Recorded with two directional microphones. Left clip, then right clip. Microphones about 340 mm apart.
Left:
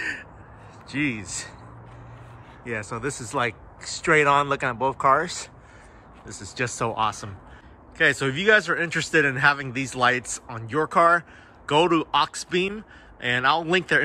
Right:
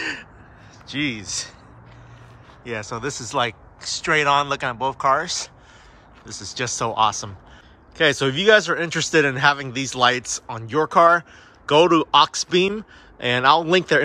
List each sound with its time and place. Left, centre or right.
0.0 s crow: centre
0.8 s speech: centre
2.6 s a man's voice: centre